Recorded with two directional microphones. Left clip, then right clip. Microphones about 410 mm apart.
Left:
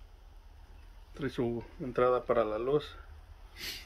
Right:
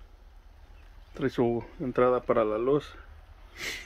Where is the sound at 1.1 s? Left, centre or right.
Centre.